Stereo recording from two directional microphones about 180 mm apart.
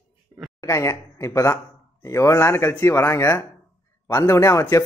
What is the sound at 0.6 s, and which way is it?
Speech, 15° left (ahead or behind).